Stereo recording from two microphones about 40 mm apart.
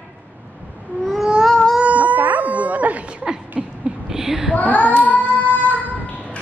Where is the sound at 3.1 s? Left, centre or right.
Right.